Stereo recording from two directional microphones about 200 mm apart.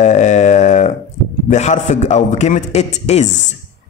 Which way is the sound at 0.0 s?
35° left (ahead or behind).